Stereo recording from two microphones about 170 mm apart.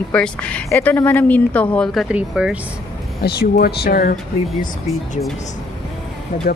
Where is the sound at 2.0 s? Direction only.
5° right (ahead or behind).